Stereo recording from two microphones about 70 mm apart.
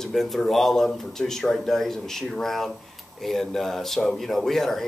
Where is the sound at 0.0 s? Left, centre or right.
Centre.